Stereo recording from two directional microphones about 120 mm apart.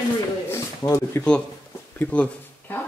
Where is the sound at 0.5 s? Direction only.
25° left (ahead or behind).